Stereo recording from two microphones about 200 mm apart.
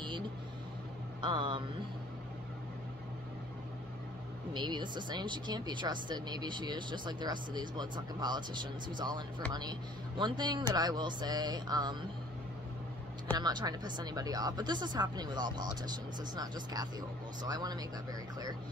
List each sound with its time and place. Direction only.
1.2 s speech: 25° right (ahead or behind)
4.6 s speech: 20° right (ahead or behind)
13.4 s speech: 20° right (ahead or behind)